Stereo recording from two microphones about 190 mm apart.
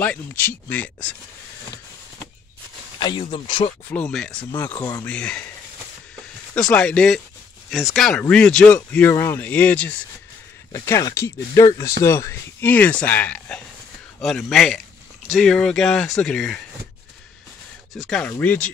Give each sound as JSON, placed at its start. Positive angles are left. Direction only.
{"t": 0.0, "sound": "speech", "side_deg": 10}
{"t": 3.0, "sound": "speech", "side_deg": 25}
{"t": 3.9, "sound": "speech", "side_deg": 5}
{"t": 4.7, "sound": "speech", "side_deg": 20}
{"t": 5.0, "sound": "speech", "side_deg": 5}
{"t": 6.7, "sound": "speech", "side_deg": 5}
{"t": 17.9, "sound": "speech", "side_deg": 0}